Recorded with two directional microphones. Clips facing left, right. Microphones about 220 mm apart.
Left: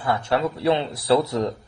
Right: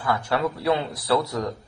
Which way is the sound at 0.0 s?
25° left (ahead or behind).